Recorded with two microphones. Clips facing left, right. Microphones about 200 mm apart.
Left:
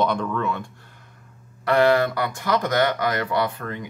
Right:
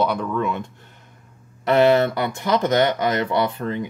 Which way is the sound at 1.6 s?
20° right (ahead or behind).